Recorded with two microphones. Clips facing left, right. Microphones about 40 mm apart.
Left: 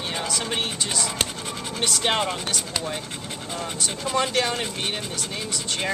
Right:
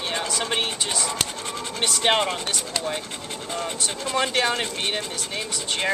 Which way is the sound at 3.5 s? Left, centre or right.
Centre.